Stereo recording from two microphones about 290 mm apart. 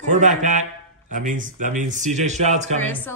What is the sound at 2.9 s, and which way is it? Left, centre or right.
Speech, centre.